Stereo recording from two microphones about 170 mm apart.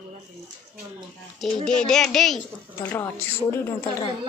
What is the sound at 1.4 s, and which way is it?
Speech, 5° left (ahead or behind).